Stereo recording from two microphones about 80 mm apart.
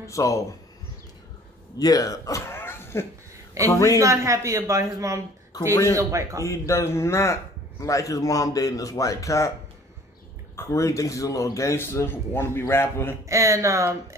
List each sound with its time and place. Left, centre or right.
0.0 s a man's voice: left
1.8 s a man's voice: left
2.4 s cough: left
3.7 s a man's voice: left
4.0 s a woman's voice: right
5.5 s a sound: left
5.9 s a woman's voice: right
6.4 s a man's voice: left
10.5 s a man's voice: left
13.3 s a woman's voice: right